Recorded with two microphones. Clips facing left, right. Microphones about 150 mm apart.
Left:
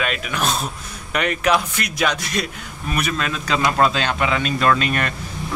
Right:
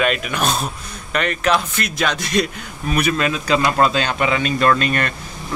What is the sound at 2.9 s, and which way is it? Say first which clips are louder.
Speech: right 5 dB; 5° right (ahead or behind).